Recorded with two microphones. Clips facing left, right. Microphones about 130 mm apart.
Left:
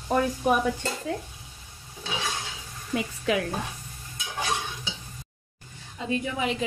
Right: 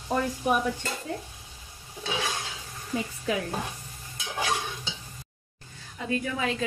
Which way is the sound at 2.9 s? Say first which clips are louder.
Left 3 dB; 85° left.